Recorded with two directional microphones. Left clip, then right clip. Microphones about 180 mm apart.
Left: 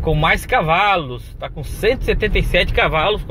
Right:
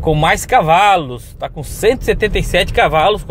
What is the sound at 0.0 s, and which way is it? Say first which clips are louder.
Speech: right 3 dB; 30° right (ahead or behind).